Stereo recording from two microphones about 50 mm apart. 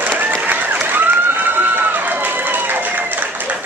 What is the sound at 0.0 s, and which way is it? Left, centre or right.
Applause, right.